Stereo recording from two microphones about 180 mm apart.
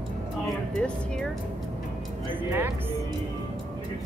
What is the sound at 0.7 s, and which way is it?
Speech, 5° left (ahead or behind).